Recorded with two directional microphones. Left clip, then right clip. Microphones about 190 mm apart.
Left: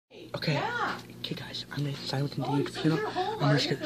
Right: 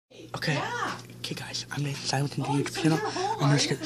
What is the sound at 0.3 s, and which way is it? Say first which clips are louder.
A woman's voice: right 1 dB; 10° right (ahead or behind).